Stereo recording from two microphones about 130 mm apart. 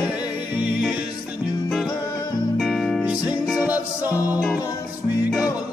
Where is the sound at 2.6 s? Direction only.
Centre (ahead or behind).